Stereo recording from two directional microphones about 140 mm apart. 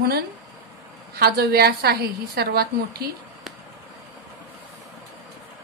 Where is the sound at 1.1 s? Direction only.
90° right.